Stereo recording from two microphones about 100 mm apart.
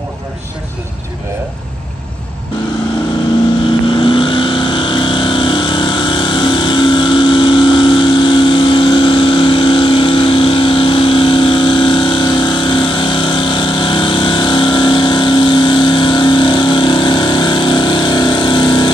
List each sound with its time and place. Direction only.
3.9 s vehicle: 60° left (ahead or behind)